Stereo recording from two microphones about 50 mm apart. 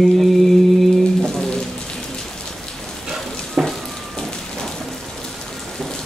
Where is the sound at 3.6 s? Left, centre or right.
Right.